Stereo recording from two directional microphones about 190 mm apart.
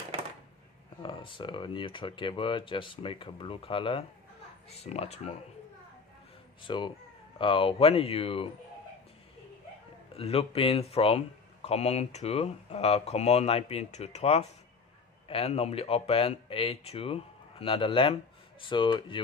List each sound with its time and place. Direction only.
1.0 s speech: 25° left (ahead or behind)
6.6 s speech: 25° left (ahead or behind)
10.1 s speech: 30° left (ahead or behind)